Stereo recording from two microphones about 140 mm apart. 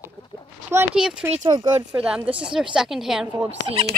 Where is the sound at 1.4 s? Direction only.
30° right (ahead or behind).